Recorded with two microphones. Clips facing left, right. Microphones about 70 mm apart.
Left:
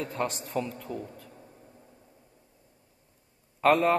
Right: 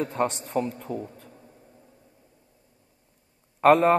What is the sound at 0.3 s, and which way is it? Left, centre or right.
Speech, right.